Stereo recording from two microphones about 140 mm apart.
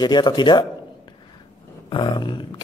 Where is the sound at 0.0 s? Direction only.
30° left (ahead or behind).